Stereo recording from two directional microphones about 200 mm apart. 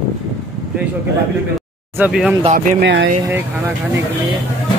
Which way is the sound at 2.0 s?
5° right (ahead or behind).